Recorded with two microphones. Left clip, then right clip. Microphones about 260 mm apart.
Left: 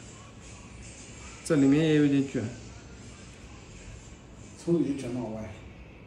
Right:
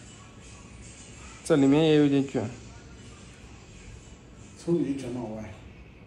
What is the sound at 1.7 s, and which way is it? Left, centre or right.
Speech, centre.